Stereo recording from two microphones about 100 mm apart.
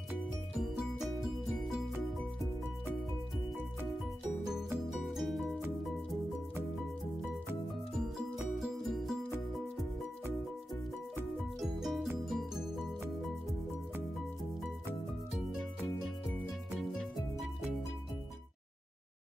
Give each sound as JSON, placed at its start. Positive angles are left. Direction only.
{"t": 0.6, "sound": "music", "side_deg": -5}
{"t": 4.5, "sound": "music", "side_deg": -5}
{"t": 8.5, "sound": "music", "side_deg": 0}
{"t": 11.3, "sound": "music", "side_deg": 0}